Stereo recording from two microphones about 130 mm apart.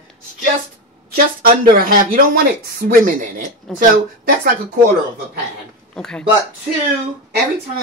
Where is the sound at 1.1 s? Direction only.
90° right.